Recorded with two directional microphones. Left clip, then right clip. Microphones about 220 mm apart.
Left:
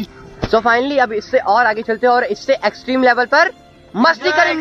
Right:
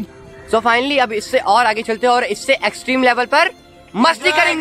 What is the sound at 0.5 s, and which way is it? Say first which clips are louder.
A man's voice: left 1 dB; 10° right (ahead or behind).